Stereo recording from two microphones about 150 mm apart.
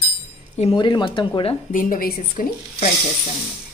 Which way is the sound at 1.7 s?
65° left (ahead or behind).